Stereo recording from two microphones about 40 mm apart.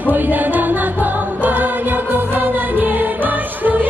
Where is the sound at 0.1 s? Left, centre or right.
Right.